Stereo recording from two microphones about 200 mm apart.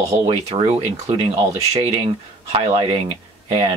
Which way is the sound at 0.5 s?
35° right (ahead or behind).